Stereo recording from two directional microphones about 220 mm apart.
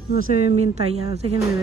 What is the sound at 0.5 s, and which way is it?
Speech, 30° right (ahead or behind).